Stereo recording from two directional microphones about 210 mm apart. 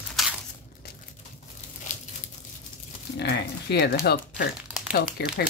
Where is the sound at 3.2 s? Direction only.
55° left (ahead or behind).